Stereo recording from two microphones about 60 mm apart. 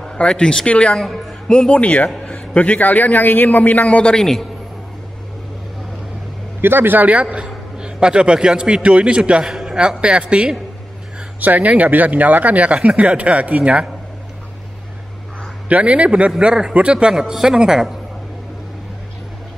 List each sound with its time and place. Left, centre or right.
0.0 s speech: centre
0.9 s a man's voice: centre
1.7 s a man's voice: left
4.1 s a man's voice: centre
6.6 s a man's voice: right; by 9.5 s centre
9.5 s a sound: centre
9.8 s speech: centre
15.7 s a man's voice: right